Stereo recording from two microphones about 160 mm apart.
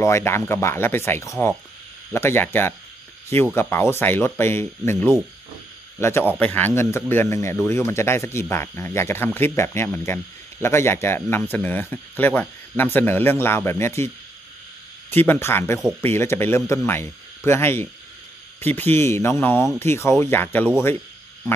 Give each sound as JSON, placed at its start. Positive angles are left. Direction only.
{"t": 0.0, "sound": "speech", "side_deg": 15}
{"t": 5.9, "sound": "a man's voice", "side_deg": 15}